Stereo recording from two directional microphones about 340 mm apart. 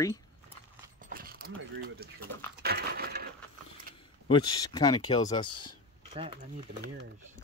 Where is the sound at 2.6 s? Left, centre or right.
Right.